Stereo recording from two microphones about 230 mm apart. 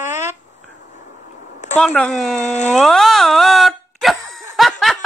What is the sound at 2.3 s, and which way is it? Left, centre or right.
Speech, left.